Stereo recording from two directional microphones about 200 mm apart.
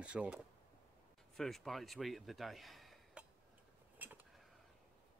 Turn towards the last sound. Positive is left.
turn(degrees=-10)  # may be behind; listen again after turning